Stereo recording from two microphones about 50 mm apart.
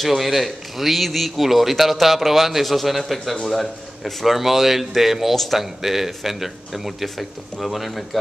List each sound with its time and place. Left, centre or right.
0.0 s a man's voice: centre